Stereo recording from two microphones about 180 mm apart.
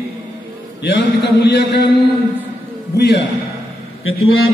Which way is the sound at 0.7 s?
75° left (ahead or behind).